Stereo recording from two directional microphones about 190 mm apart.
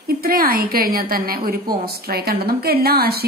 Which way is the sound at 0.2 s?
50° right (ahead or behind).